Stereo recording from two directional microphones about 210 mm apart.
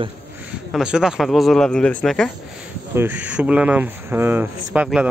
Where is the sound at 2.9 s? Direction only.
10° right (ahead or behind).